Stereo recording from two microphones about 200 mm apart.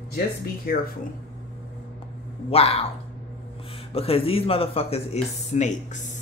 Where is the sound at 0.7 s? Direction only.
50° left (ahead or behind).